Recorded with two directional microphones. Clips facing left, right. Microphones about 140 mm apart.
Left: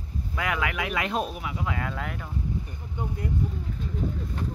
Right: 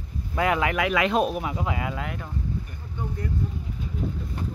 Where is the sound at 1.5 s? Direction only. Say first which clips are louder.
Right 3 dB; 25° right (ahead or behind).